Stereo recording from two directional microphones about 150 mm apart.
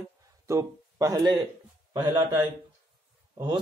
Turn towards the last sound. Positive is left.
turn(degrees=-30)  # may be behind; listen again after turning